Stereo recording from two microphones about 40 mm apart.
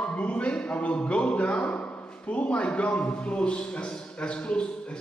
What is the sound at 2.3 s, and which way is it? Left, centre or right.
A man's voice, left.